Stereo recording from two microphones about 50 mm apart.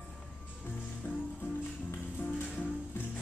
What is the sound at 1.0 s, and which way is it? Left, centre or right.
Music, left.